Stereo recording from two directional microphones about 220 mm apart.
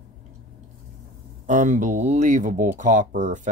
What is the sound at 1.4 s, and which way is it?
Speech, 35° right (ahead or behind).